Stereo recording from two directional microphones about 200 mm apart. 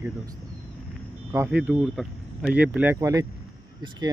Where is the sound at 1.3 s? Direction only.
10° right (ahead or behind).